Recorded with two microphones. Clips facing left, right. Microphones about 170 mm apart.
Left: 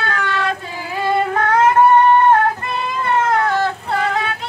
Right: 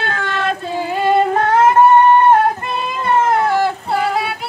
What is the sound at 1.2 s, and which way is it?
Female singing, 30° right (ahead or behind).